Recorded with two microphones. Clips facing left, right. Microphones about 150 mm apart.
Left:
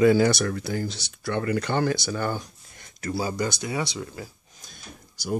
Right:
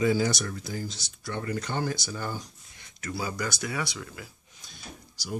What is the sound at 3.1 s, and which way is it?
Speech, 30° left (ahead or behind).